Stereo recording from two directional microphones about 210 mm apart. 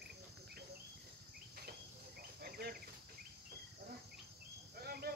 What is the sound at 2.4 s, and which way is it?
Cricket, 50° right (ahead or behind).